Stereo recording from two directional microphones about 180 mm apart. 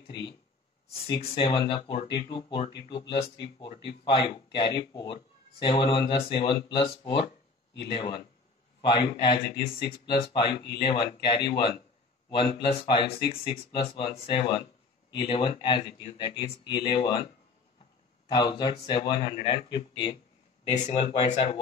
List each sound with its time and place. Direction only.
0.1 s speech: 25° left (ahead or behind)
18.3 s speech: 25° left (ahead or behind)
20.7 s speech: 40° left (ahead or behind)
21.0 s speech: 30° left (ahead or behind)